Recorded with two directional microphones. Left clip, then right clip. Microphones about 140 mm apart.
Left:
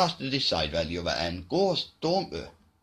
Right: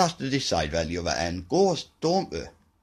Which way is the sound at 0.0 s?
55° right (ahead or behind).